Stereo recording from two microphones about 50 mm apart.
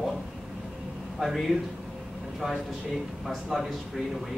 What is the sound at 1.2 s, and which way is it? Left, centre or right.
Speech, centre.